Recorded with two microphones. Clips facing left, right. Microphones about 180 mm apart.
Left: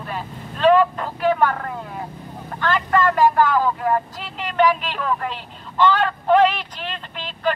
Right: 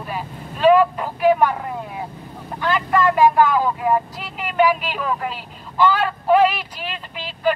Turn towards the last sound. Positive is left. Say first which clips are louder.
# right 2 dB
turn(degrees=-10)  # may be behind; listen again after turning